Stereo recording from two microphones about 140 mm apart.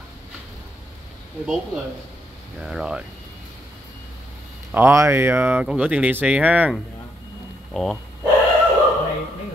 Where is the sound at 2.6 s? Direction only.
5° right (ahead or behind).